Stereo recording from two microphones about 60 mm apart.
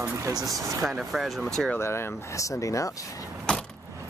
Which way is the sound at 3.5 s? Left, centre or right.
Centre.